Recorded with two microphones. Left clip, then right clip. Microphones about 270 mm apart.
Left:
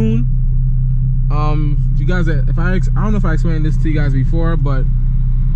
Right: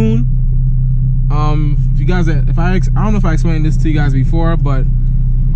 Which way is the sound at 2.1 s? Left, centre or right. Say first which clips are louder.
Right 2 dB; right.